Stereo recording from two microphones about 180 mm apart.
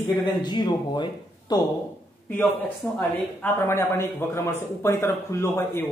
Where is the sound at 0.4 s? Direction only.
25° left (ahead or behind).